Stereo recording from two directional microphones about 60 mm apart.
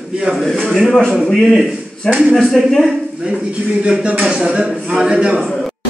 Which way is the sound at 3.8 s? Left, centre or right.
Centre.